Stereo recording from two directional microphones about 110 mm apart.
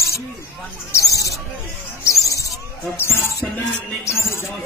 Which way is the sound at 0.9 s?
30° left (ahead or behind).